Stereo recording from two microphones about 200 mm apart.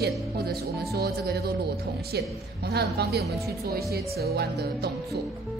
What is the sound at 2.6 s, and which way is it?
A woman's voice, 55° right (ahead or behind).